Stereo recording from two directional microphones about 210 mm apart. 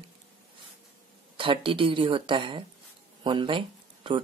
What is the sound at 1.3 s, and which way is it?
Speech, 25° right (ahead or behind).